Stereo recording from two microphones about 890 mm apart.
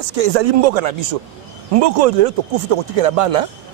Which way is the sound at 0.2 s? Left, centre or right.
Right.